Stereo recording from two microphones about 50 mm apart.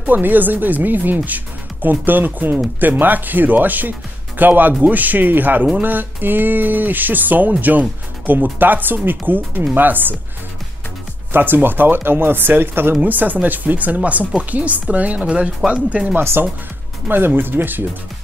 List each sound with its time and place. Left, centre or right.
0.0 s speech: right
11.3 s speech: right
13.0 s speech: right
16.2 s speech: right